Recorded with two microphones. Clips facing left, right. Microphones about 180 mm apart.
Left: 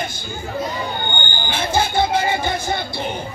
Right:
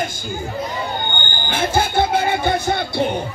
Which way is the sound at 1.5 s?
55° right (ahead or behind).